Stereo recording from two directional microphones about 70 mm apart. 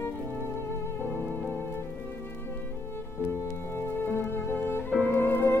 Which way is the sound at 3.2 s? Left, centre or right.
Left.